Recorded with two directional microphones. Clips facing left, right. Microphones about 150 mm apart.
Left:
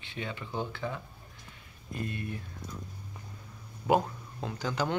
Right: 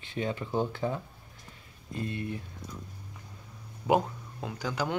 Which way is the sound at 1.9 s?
25° right (ahead or behind).